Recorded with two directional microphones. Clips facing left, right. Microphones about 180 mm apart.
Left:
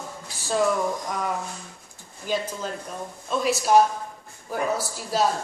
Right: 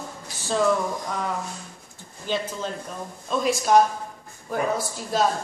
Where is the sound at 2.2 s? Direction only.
10° left (ahead or behind).